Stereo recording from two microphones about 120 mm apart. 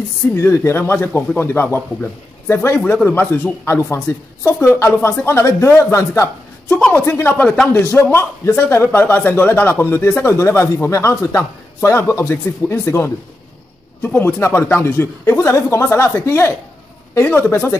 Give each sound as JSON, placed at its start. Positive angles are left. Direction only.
{"t": 0.4, "sound": "speech", "side_deg": 20}
{"t": 7.4, "sound": "a man's voice", "side_deg": 5}
{"t": 7.7, "sound": "speech", "side_deg": 20}